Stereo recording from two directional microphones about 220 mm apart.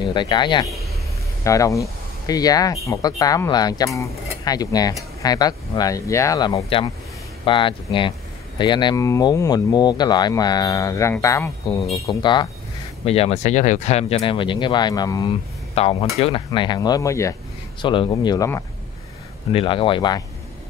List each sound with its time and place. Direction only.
0.0 s speech: 20° left (ahead or behind)